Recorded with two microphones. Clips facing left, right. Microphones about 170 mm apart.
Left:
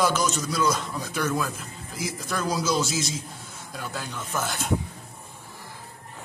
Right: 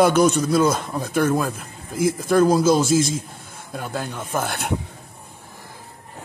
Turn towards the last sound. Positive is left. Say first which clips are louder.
# right 5 dB
turn(degrees=-60)  # may be behind; listen again after turning